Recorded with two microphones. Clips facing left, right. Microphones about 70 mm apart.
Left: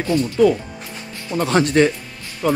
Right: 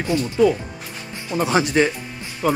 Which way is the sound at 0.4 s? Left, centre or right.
Centre.